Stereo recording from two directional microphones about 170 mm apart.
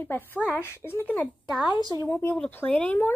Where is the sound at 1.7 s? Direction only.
25° left (ahead or behind).